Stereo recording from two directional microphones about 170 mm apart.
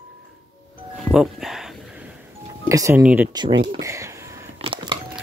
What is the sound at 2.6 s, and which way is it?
Speech, 15° right (ahead or behind).